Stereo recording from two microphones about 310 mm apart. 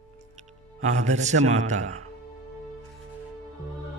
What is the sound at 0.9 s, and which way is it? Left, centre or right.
A man's voice, right.